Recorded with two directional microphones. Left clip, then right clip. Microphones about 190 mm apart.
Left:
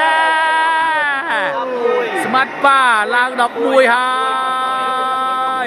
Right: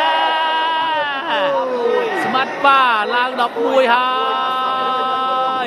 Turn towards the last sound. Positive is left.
turn(degrees=20)  # may be behind; listen again after turning